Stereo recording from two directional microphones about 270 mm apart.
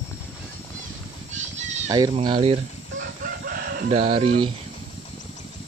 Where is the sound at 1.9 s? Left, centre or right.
Centre.